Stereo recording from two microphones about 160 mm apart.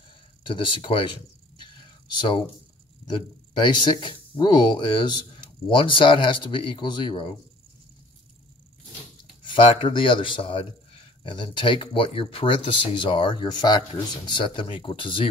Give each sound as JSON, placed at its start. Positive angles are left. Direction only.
{"t": 0.5, "sound": "speech", "side_deg": 30}
{"t": 1.6, "sound": "a sound", "side_deg": 30}
{"t": 3.1, "sound": "speech", "side_deg": 30}
{"t": 9.4, "sound": "speech", "side_deg": 35}